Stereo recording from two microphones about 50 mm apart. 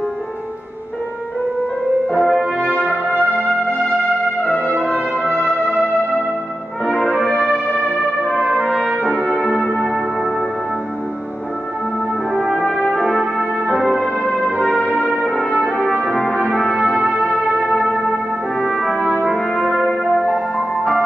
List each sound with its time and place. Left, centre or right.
2.1 s brass instrument: centre
4.5 s brass instrument: left
6.9 s music: centre
9.4 s music: centre
12.7 s brass instrument: centre
13.2 s music: centre
16.1 s brass instrument: centre
17.2 s music: centre
18.7 s brass instrument: centre
19.9 s music: centre